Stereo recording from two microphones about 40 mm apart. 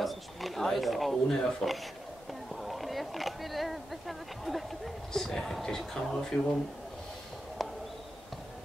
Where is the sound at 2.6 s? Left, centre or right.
Centre.